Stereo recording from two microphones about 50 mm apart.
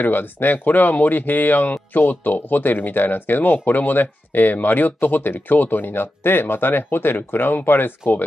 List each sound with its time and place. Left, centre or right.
0.0 s speech: left